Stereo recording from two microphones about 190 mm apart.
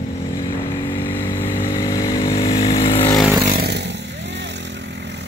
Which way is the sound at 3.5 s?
60° right (ahead or behind).